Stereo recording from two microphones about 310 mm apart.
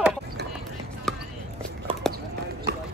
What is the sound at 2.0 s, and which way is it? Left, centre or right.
Clip-clop, centre.